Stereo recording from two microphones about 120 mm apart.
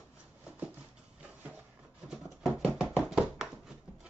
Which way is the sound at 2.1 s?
5° right (ahead or behind).